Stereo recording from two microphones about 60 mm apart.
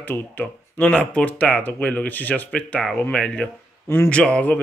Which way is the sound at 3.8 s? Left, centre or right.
Left.